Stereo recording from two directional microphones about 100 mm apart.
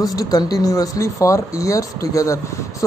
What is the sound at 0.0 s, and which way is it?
Speech, 40° left (ahead or behind).